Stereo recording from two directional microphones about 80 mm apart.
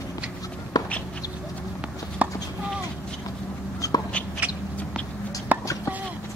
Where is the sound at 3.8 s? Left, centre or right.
Left.